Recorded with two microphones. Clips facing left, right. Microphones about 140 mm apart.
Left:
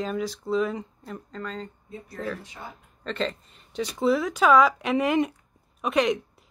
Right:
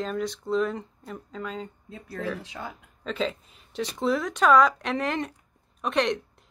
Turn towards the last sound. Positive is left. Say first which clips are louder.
# left 2 dB
turn(degrees=5)  # may be behind; listen again after turning